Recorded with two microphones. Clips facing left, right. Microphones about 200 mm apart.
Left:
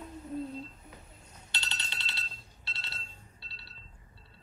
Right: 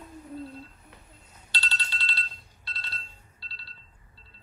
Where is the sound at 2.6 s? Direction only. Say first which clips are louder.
Right 3 dB; 25° left (ahead or behind).